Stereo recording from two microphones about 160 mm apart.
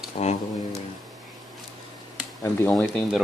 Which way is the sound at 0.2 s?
40° left (ahead or behind).